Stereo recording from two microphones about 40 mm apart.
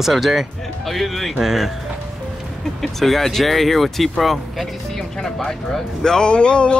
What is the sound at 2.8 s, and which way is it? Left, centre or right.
Speech, centre.